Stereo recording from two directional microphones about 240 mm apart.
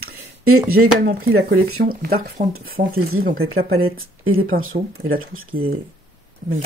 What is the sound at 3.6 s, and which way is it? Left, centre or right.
Speech, right.